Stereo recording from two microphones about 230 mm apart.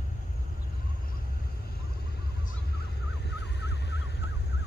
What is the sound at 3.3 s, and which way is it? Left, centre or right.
Vehicle, left.